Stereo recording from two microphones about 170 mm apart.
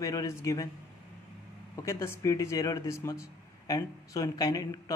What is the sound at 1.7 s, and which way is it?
A man's voice, 15° left (ahead or behind).